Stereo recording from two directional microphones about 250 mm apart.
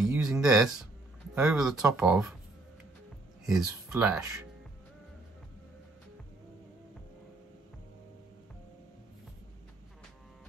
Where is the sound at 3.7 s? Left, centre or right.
Centre.